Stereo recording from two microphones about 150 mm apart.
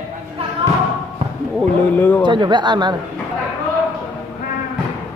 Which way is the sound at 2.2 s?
30° right (ahead or behind).